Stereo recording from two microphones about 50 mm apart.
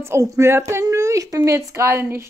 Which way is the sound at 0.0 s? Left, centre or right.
Right.